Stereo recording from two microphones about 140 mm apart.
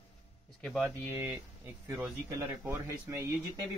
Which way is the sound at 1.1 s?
15° right (ahead or behind).